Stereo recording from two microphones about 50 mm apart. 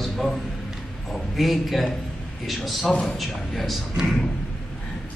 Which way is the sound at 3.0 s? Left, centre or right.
Centre.